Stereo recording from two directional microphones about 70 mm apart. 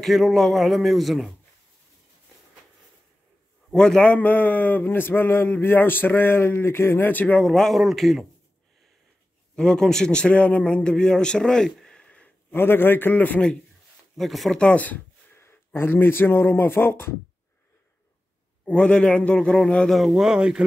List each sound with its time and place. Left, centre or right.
0.0 s a man's voice: centre
3.7 s a man's voice: centre
7.4 s a man's voice: centre
9.6 s a man's voice: centre
12.5 s a man's voice: left
14.1 s a man's voice: centre
14.6 s a man's voice: centre
15.3 s speech: left
18.7 s a man's voice: centre
19.9 s speech: centre